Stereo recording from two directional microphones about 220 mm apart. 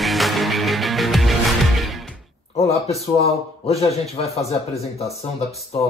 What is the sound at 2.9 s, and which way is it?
A man's voice, 30° left (ahead or behind).